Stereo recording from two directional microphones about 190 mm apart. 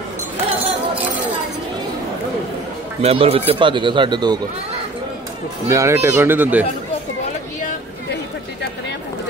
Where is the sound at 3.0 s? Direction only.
35° right (ahead or behind).